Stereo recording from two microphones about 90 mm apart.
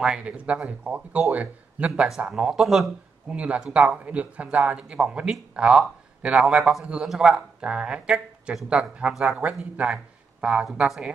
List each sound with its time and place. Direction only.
0.0 s a man's voice: 10° right (ahead or behind)